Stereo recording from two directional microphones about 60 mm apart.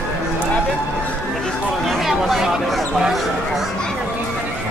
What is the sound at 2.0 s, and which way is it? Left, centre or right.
Chatter, centre.